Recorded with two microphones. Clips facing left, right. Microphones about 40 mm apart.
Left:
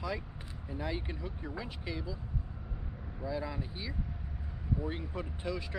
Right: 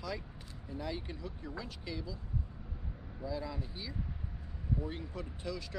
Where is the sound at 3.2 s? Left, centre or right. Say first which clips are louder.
Left 2 dB; left.